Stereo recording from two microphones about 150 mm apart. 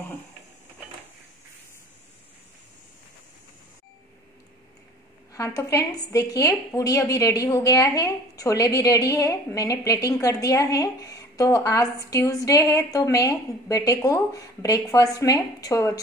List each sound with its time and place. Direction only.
5.3 s a woman's voice: 20° left (ahead or behind)